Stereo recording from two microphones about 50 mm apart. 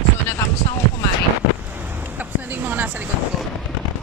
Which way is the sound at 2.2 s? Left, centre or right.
Right.